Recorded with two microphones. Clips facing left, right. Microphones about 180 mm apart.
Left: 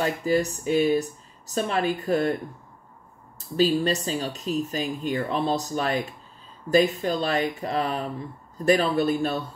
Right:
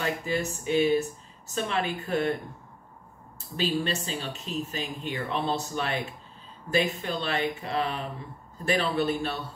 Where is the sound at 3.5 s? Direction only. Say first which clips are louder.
Left 6 dB; 40° left (ahead or behind).